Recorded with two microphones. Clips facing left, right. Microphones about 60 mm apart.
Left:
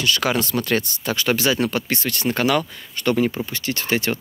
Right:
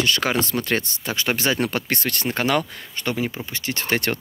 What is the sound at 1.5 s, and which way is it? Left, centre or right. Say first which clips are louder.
Speech: left 1 dB; right.